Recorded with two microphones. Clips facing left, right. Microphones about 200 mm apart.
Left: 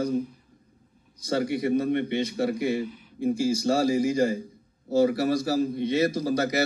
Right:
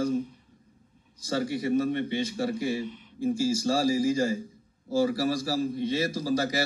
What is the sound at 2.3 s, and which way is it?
A man's voice, 20° left (ahead or behind).